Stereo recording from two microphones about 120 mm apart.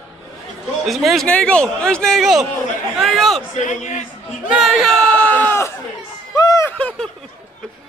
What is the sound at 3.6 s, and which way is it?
Speech, 90° left.